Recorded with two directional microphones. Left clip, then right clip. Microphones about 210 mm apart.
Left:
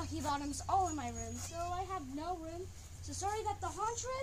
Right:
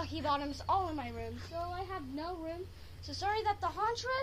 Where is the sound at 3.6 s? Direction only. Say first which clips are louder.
Right 4 dB; 20° left (ahead or behind).